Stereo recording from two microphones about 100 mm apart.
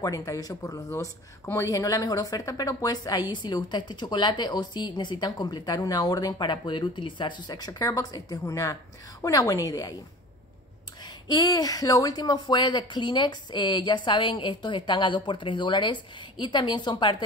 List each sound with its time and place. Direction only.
0.0 s speech: 35° left (ahead or behind)
11.2 s a woman's voice: 40° left (ahead or behind)